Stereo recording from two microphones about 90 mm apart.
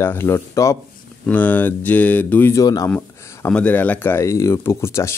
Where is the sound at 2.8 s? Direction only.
20° left (ahead or behind).